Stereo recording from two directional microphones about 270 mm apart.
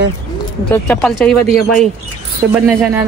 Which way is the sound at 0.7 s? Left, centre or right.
Centre.